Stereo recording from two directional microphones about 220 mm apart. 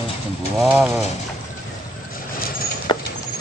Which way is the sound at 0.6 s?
5° right (ahead or behind).